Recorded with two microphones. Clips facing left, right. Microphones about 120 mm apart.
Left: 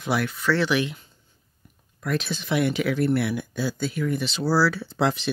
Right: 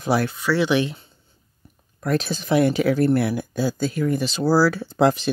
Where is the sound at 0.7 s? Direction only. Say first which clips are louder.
Right 4 dB; 30° right (ahead or behind).